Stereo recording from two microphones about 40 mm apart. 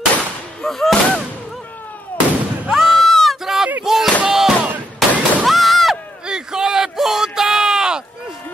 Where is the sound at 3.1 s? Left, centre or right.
Centre.